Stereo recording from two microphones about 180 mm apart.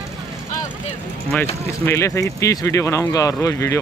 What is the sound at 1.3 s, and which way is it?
Speech, 10° left (ahead or behind).